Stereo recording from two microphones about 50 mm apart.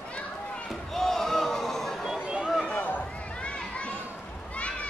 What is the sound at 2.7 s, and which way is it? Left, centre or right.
Run, left.